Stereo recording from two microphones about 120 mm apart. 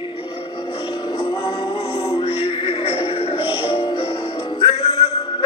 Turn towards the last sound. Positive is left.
turn(degrees=55)  # may be behind; listen again after turning